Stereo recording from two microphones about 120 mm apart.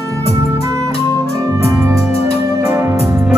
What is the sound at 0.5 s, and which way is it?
Music, 25° right (ahead or behind).